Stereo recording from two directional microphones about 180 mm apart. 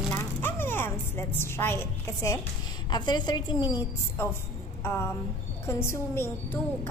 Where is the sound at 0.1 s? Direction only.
10° left (ahead or behind).